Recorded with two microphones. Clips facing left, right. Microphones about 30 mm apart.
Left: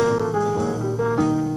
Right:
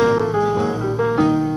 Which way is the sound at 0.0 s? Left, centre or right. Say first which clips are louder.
Right 4 dB; right.